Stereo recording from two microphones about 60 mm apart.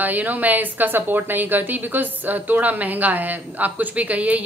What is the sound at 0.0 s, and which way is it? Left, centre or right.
A woman's voice, right.